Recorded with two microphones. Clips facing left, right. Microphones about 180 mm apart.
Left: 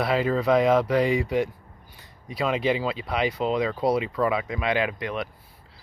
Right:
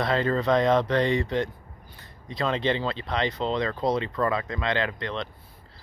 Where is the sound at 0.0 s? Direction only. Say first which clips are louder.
Left 1 dB; 5° left (ahead or behind).